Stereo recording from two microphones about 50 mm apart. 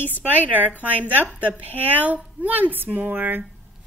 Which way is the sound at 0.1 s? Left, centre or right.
Right.